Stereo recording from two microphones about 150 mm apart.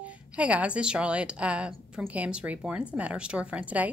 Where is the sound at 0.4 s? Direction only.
10° right (ahead or behind).